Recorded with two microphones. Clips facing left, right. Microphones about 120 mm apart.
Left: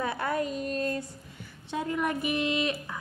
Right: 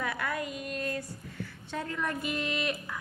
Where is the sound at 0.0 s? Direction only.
30° left (ahead or behind).